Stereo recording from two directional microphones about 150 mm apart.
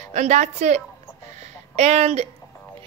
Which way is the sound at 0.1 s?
50° right (ahead or behind).